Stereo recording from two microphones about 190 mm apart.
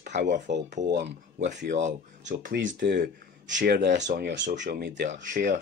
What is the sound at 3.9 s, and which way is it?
Speech, 40° right (ahead or behind).